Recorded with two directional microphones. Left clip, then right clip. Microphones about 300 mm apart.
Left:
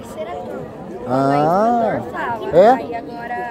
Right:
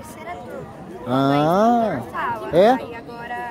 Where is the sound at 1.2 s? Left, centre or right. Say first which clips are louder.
Left 2 dB; right.